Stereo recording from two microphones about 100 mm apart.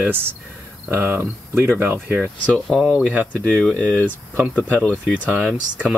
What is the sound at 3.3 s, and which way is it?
Speech, 15° left (ahead or behind).